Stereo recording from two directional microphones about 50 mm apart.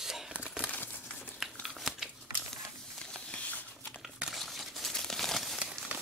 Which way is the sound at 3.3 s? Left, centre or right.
Left.